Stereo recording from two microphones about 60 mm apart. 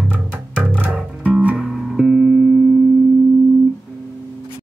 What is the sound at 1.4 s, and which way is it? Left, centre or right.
Music, right.